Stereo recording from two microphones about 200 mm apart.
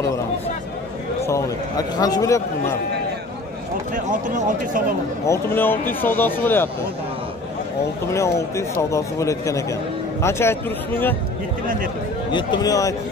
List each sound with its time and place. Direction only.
1.2 s speech: 15° left (ahead or behind)
3.9 s speech: 40° right (ahead or behind)
5.2 s speech: 10° left (ahead or behind)
8.1 s speech: 15° left (ahead or behind)
12.3 s a man's voice: 25° left (ahead or behind)